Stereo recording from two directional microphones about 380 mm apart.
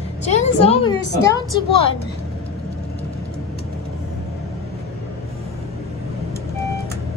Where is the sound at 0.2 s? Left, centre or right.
Centre.